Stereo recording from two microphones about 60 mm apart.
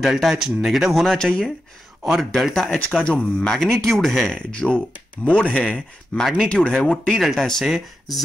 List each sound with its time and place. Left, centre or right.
0.0 s speech: centre
1.1 s speech: centre
3.0 s speech: centre
3.5 s speech: centre